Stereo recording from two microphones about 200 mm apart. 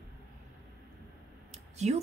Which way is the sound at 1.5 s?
35° right (ahead or behind).